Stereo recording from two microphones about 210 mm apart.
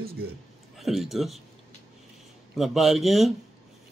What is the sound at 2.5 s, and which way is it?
Speech, centre (ahead or behind).